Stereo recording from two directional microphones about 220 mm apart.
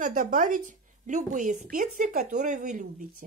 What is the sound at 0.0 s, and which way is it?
Speech, 35° right (ahead or behind).